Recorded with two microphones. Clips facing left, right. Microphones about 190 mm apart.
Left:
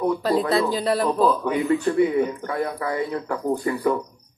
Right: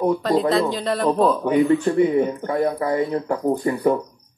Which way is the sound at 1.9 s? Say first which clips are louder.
Right 2 dB; 35° right (ahead or behind).